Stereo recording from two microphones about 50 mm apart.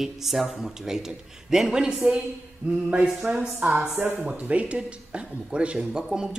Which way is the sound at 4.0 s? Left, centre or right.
Right.